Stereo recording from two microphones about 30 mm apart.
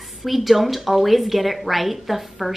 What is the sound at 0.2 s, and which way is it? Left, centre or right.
A woman's voice, centre.